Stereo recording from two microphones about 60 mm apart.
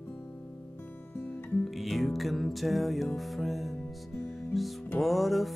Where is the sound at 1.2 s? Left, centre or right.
Left.